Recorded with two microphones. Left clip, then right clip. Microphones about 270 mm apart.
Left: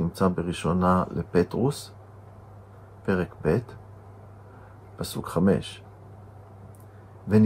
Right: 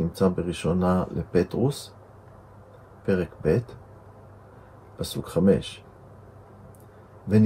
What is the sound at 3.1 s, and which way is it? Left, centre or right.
Speech, centre.